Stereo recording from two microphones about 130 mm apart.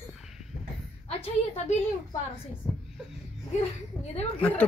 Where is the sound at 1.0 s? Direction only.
50° left (ahead or behind).